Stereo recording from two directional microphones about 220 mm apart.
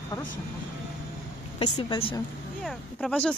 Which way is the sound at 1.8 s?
25° left (ahead or behind).